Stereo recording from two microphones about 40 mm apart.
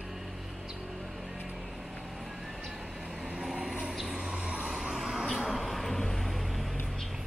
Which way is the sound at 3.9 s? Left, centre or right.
Centre.